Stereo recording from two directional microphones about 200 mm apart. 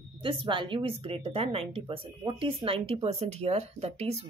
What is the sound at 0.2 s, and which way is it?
A woman's voice, 25° right (ahead or behind).